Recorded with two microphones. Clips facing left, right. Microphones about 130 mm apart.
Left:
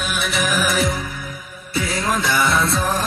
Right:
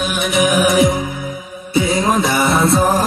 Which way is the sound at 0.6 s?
20° right (ahead or behind).